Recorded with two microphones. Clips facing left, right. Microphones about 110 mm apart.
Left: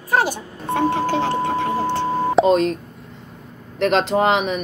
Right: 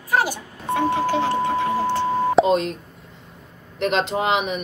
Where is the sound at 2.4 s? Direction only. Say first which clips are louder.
Left 2 dB; centre (ahead or behind).